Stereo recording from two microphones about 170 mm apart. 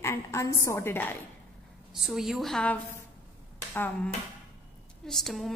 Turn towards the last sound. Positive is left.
turn(degrees=0)  # may be behind; listen again after turning